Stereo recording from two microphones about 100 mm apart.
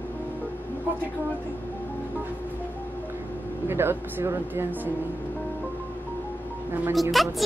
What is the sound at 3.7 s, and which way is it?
Speech, 25° right (ahead or behind).